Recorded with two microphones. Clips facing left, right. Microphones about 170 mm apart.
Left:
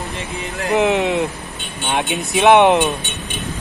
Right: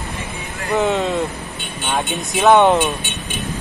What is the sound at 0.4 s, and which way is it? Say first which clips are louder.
Speech: left 2 dB; 75° left (ahead or behind).